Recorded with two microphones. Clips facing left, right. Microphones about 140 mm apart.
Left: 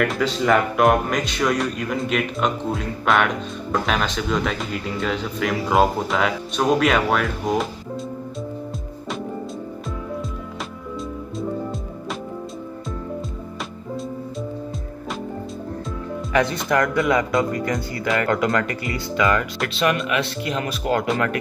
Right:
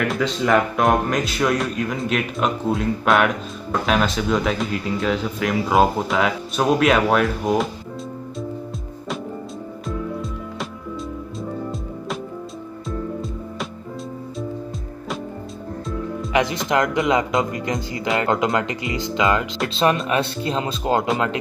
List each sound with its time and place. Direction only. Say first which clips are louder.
0.0 s speech: left 1 dB; centre (ahead or behind)
16.3 s speech: even; 15° right (ahead or behind)